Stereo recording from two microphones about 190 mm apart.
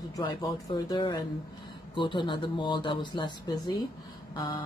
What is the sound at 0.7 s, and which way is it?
Speech, 20° left (ahead or behind).